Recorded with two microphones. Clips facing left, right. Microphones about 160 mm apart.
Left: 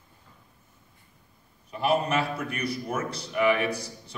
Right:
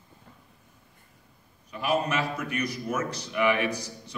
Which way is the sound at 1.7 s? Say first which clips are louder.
Left 2 dB; 35° left (ahead or behind).